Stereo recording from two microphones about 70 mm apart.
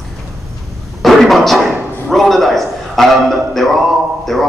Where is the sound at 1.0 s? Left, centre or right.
Centre.